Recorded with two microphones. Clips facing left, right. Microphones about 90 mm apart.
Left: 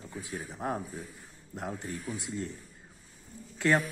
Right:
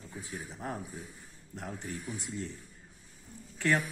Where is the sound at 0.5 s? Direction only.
30° left (ahead or behind).